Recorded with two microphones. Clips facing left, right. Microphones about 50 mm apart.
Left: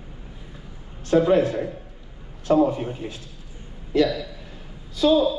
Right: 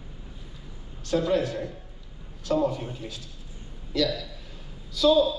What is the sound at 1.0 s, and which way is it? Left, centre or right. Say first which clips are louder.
A man's voice: left 7 dB; left.